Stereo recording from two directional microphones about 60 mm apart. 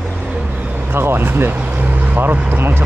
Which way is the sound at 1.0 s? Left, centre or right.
Right.